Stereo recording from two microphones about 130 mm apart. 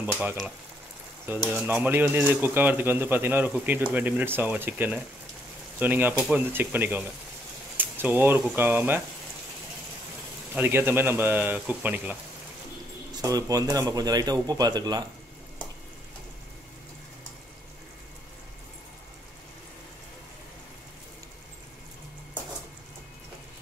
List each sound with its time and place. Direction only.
0.0 s speech: 15° right (ahead or behind)
1.5 s speech: 15° right (ahead or behind)
10.5 s speech: 15° right (ahead or behind)
13.1 s speech: 25° right (ahead or behind)